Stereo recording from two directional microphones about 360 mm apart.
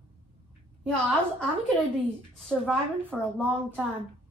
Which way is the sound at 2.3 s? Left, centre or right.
Centre.